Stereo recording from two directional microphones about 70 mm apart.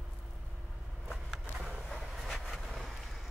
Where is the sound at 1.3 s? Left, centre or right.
Centre.